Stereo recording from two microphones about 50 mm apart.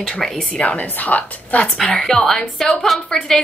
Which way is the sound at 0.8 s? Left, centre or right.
Left.